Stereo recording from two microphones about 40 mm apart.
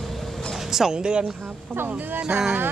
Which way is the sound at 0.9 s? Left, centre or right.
Right.